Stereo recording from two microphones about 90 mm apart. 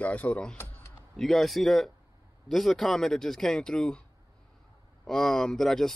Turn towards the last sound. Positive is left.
turn(degrees=5)  # may be behind; listen again after turning